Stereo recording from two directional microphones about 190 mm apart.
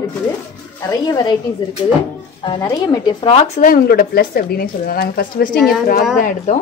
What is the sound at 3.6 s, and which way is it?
Speech, 50° left (ahead or behind).